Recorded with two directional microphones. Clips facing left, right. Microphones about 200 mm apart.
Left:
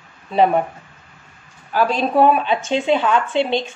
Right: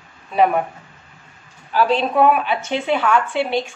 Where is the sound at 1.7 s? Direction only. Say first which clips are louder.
Right 1 dB; 45° left (ahead or behind).